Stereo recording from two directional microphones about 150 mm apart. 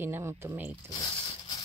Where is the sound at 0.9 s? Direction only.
25° left (ahead or behind).